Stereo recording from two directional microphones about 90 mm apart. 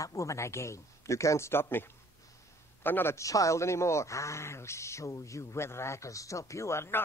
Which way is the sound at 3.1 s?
35° left (ahead or behind).